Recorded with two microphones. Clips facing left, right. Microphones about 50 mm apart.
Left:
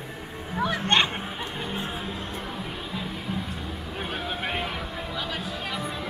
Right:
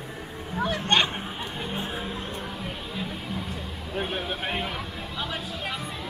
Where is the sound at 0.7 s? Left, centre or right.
Centre.